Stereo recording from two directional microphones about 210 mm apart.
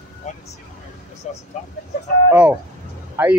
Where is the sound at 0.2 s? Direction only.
35° left (ahead or behind).